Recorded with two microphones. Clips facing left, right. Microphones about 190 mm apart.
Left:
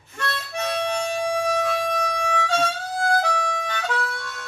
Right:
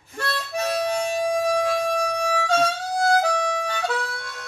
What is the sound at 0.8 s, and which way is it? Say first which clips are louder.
Music: right 1 dB; 40° right (ahead or behind).